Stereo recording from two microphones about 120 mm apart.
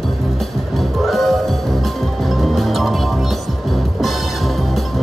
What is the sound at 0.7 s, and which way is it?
Music, centre (ahead or behind).